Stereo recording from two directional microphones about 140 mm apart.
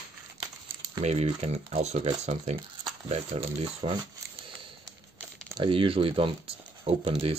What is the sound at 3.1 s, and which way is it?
Speech, 45° right (ahead or behind).